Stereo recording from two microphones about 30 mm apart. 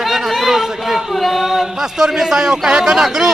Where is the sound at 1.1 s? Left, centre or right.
Centre.